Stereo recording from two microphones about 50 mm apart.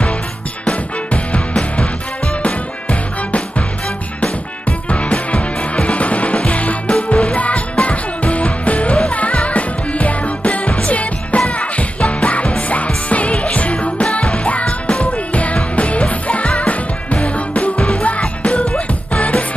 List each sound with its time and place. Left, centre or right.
0.7 s music: left